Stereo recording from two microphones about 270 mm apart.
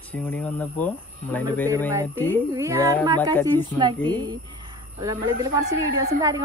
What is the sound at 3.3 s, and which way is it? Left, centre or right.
Speech, centre.